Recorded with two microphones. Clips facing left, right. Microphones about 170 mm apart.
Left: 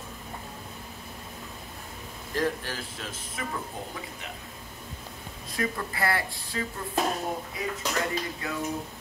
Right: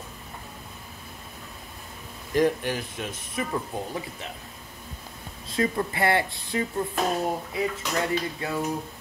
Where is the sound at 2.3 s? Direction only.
15° right (ahead or behind).